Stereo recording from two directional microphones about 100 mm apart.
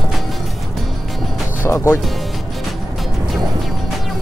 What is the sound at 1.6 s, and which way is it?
Speech, 25° left (ahead or behind).